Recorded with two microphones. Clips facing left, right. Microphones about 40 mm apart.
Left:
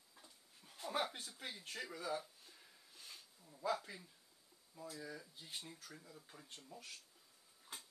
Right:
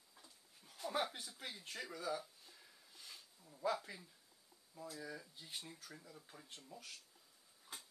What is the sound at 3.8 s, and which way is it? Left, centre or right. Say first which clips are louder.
Speech: even; centre.